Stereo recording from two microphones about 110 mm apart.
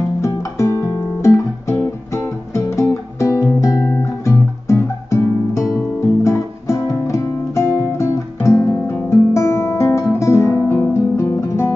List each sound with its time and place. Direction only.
0.3 s music: 25° left (ahead or behind)